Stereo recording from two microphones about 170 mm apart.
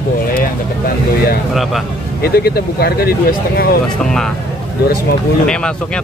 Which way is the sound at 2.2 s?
65° left (ahead or behind).